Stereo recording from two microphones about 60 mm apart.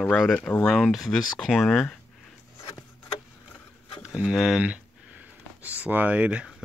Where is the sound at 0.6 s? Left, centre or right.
Centre.